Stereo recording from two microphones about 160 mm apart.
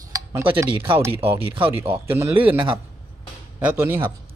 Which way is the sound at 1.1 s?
35° right (ahead or behind).